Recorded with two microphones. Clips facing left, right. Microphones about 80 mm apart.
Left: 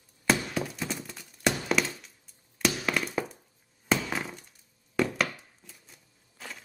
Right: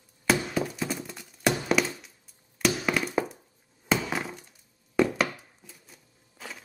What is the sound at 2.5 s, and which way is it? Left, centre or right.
Tap, centre.